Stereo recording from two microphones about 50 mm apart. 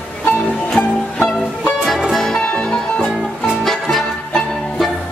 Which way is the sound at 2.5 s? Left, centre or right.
Centre.